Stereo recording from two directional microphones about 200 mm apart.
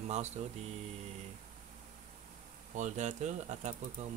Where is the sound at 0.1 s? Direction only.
35° right (ahead or behind).